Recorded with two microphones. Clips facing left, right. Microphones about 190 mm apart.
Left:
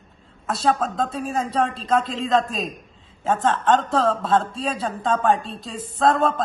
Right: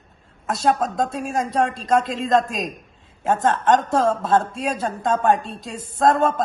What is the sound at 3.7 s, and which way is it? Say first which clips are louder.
A woman's voice: right 1 dB; 15° right (ahead or behind).